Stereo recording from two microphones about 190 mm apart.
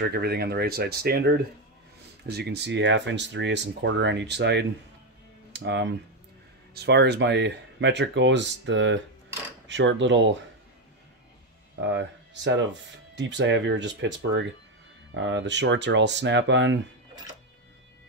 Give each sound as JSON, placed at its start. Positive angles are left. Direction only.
{"t": 0.0, "sound": "speech", "side_deg": -55}
{"t": 11.8, "sound": "speech", "side_deg": -70}